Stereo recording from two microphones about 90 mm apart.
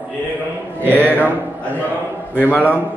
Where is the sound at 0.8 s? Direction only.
20° right (ahead or behind).